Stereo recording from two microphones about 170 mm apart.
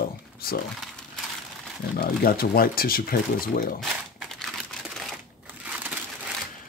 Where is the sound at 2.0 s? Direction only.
60° left (ahead or behind).